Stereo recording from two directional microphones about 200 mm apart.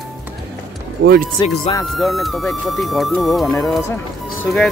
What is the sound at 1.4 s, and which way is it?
Speech, 20° left (ahead or behind).